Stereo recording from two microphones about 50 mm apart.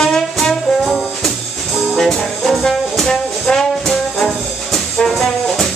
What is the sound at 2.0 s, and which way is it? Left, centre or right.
Brass instrument, centre.